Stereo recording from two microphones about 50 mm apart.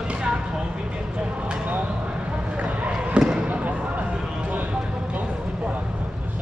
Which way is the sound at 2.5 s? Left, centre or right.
Right.